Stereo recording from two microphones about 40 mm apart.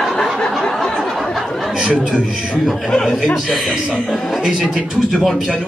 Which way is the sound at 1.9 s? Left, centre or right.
Right.